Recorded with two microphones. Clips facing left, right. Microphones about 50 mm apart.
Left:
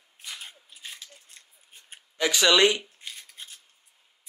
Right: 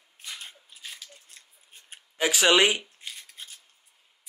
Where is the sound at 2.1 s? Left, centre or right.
Right.